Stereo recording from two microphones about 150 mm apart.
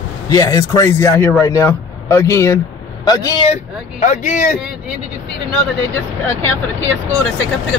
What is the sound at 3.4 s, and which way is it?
Speech, 45° left (ahead or behind).